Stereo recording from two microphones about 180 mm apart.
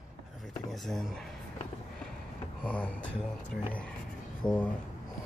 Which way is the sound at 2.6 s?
10° left (ahead or behind).